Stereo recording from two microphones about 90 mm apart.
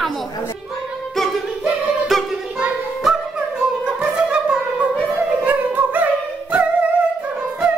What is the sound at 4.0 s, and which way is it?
Music, 10° right (ahead or behind).